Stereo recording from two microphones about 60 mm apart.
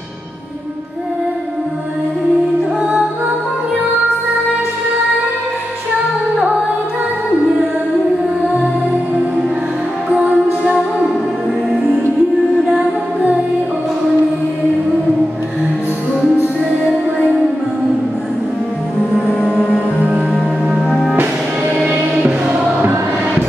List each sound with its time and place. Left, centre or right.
10.0 s music: right
19.5 s music: left
22.1 s music: centre